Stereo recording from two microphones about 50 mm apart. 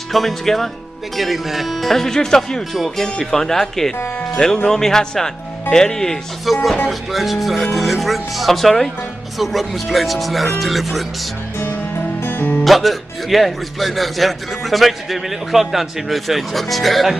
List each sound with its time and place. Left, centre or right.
0.1 s a man's voice: centre
2.7 s a man's voice: centre
6.4 s a man's voice: centre
12.2 s music: left
12.6 s a man's voice: centre